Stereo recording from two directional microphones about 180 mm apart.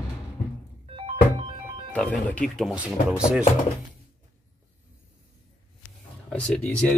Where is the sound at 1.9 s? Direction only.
10° left (ahead or behind).